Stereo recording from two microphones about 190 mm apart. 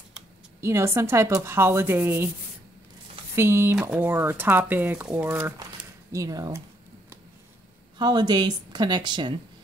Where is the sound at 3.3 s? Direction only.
15° right (ahead or behind).